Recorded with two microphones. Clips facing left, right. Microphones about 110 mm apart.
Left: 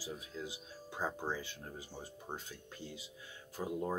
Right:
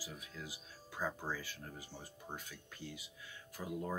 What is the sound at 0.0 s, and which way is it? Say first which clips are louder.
Speech: left 5 dB; 25° left (ahead or behind).